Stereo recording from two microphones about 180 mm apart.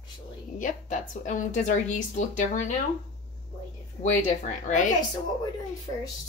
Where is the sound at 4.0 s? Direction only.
45° left (ahead or behind).